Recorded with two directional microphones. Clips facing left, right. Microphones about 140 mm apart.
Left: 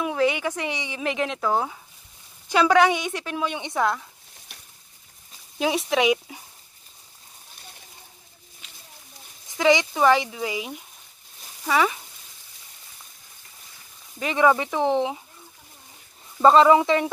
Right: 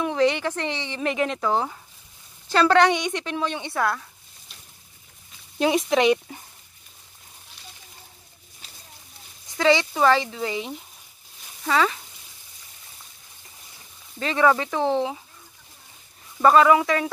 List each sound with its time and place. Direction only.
0.0 s a woman's voice: 5° left (ahead or behind)
1.0 s a woman's voice: centre (ahead or behind)
4.5 s a sound: 70° left (ahead or behind)
5.6 s speech: centre (ahead or behind)
9.6 s a woman's voice: 15° left (ahead or behind)
14.2 s a woman's voice: 15° left (ahead or behind)
16.3 s speech: 25° left (ahead or behind)